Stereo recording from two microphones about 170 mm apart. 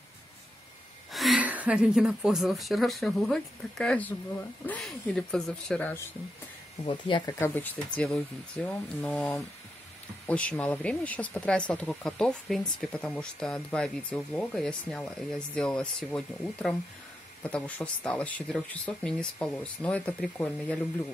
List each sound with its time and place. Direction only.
1.1 s speech: centre (ahead or behind)
6.9 s speech: 30° left (ahead or behind)
7.3 s speech: 10° left (ahead or behind)